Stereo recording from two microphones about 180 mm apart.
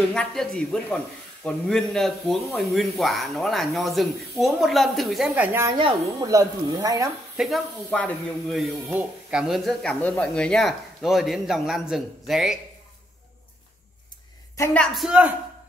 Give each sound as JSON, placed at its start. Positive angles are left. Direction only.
{"t": 0.1, "sound": "a man's voice", "side_deg": 5}
{"t": 5.8, "sound": "speech", "side_deg": -25}
{"t": 7.3, "sound": "a man's voice", "side_deg": 0}
{"t": 14.6, "sound": "a man's voice", "side_deg": 5}